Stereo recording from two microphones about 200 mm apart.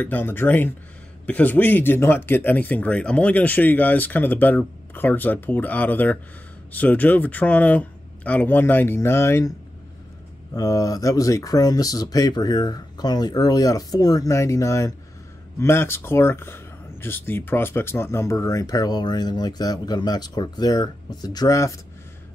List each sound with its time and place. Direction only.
0.0 s speech: 10° left (ahead or behind)
10.5 s speech: 15° left (ahead or behind)